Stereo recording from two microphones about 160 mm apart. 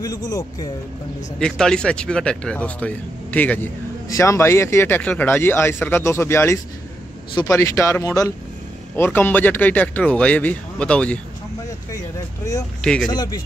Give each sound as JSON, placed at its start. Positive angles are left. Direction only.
{"t": 0.0, "sound": "speech", "side_deg": 25}
{"t": 1.4, "sound": "speech", "side_deg": 5}
{"t": 12.8, "sound": "speech", "side_deg": 5}
{"t": 13.1, "sound": "speech", "side_deg": 25}